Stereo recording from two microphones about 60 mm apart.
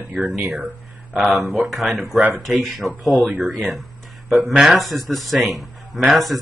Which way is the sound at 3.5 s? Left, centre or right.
Centre.